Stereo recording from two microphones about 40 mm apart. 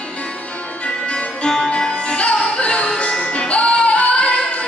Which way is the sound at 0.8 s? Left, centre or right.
Left.